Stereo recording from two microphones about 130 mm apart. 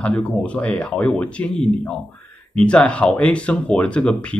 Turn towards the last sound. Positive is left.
turn(degrees=5)  # may be behind; listen again after turning